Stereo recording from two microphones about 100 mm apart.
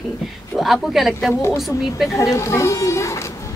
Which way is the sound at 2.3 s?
30° left (ahead or behind).